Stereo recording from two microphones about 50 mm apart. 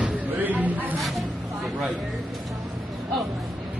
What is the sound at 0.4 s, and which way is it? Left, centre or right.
Snake, right.